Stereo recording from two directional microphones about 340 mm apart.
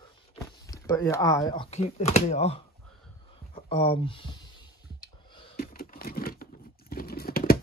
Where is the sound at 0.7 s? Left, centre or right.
Centre.